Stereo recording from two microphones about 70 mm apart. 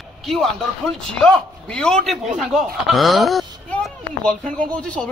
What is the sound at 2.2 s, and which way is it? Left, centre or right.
Speech, centre.